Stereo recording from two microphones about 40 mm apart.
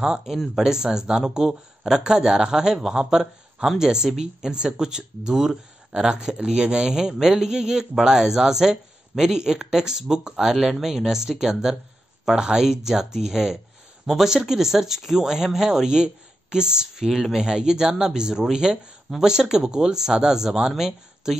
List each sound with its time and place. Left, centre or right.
0.0 s speech: centre